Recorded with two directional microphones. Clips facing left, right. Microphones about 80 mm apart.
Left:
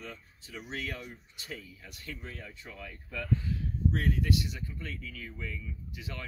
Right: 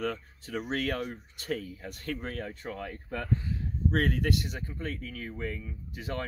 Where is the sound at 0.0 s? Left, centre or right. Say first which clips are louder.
Right 12 dB; right.